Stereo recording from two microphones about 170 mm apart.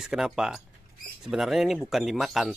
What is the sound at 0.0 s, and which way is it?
Speech, 5° right (ahead or behind).